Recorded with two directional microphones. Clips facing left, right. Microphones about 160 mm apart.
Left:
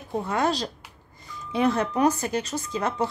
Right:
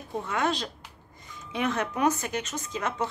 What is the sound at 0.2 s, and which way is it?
A woman's voice, 35° left (ahead or behind).